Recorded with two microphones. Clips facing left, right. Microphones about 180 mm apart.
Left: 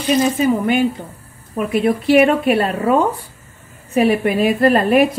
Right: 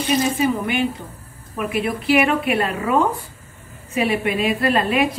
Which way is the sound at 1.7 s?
40° left (ahead or behind).